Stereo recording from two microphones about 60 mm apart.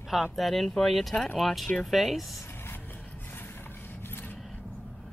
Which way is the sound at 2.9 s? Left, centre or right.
Left.